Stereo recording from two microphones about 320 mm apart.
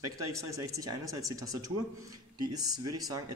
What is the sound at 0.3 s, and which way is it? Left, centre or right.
Speech, centre.